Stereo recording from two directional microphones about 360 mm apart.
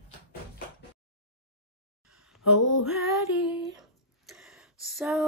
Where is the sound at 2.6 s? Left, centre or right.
Left.